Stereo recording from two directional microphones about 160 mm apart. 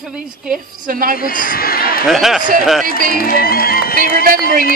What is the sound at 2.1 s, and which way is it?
Speech, centre (ahead or behind).